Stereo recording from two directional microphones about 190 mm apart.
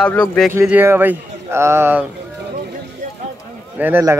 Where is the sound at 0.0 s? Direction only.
5° left (ahead or behind).